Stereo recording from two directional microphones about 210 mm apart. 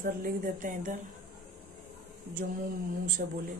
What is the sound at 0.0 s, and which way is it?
Speech, 40° right (ahead or behind).